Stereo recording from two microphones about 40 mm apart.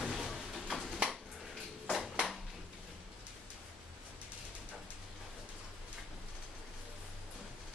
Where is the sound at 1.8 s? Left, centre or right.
Centre.